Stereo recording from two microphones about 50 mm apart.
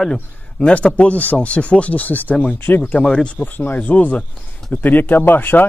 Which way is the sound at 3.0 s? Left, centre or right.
Centre.